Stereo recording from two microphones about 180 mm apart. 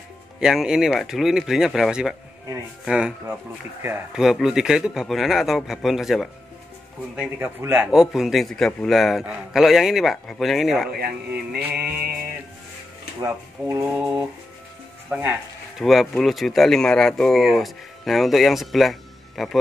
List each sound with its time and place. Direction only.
0.4 s speech: 5° right (ahead or behind)
7.2 s speech: 10° right (ahead or behind)
11.5 s mantra: 60° right (ahead or behind)
13.2 s speech: 15° right (ahead or behind)
15.0 s speech: 5° right (ahead or behind)